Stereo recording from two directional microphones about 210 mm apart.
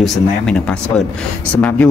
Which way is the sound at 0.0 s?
Centre (ahead or behind).